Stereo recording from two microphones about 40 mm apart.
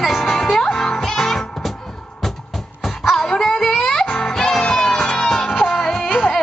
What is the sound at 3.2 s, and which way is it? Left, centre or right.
Music, centre.